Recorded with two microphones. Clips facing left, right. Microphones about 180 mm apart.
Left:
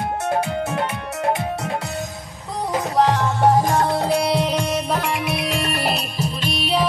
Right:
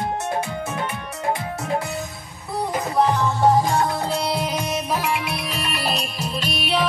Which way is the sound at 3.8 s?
25° left (ahead or behind).